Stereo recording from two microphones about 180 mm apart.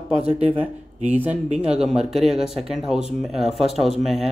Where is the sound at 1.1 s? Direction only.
10° right (ahead or behind).